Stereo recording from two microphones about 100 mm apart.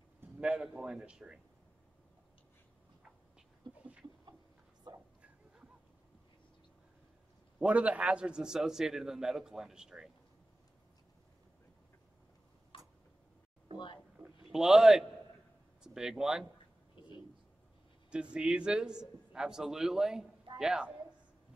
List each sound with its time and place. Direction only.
0.4 s a man's voice: 10° right (ahead or behind)
4.9 s a sound: 50° right (ahead or behind)
7.6 s a man's voice: 15° right (ahead or behind)
12.7 s tick-tock: 60° left (ahead or behind)
14.2 s a man's voice: 5° right (ahead or behind)
18.1 s a man's voice: 10° right (ahead or behind)